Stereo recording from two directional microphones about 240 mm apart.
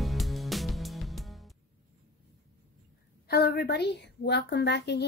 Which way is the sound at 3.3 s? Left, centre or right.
Left.